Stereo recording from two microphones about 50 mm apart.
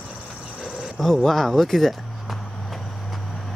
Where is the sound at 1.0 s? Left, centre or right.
Centre.